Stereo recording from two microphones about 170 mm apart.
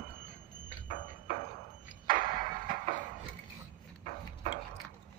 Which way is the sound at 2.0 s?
55° right (ahead or behind).